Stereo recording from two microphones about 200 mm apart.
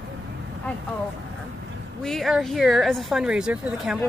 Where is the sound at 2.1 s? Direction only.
Centre (ahead or behind).